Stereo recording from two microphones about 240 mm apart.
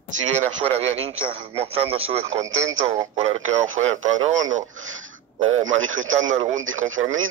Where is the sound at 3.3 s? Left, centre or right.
Right.